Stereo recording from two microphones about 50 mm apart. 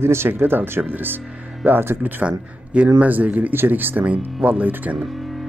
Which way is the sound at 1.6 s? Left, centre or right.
Right.